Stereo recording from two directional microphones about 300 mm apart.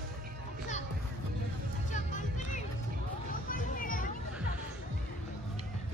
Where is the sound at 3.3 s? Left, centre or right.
Left.